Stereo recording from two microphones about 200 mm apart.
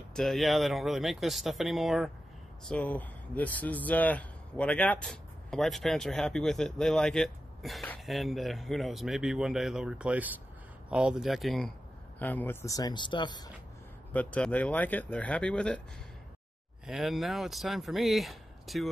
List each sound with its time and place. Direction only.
0.1 s speech: centre (ahead or behind); by 13.5 s 20° left (ahead or behind)
14.1 s speech: 5° left (ahead or behind)
16.8 s speech: centre (ahead or behind)